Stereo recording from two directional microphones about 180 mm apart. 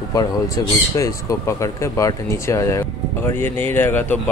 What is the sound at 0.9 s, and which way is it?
Speech, 15° left (ahead or behind).